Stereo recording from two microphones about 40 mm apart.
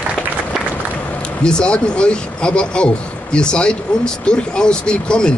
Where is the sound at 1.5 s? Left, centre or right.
Left.